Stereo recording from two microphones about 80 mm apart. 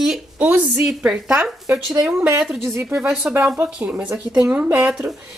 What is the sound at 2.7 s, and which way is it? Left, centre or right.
Speech, right.